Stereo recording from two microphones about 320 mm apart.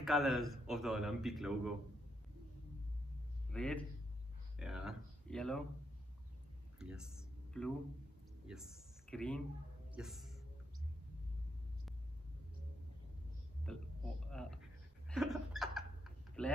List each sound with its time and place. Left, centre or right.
0.0 s a man's voice: centre
3.5 s a man's voice: centre
6.8 s a sound: centre
8.5 s speech: centre
9.9 s a sound: centre
13.7 s a man's voice: centre
15.0 s hiccup: centre